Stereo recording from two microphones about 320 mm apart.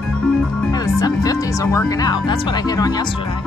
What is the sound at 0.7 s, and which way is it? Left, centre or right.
Speech, centre.